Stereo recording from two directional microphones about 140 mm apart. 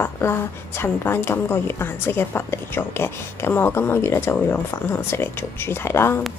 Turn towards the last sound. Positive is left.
turn(degrees=20)  # may be behind; listen again after turning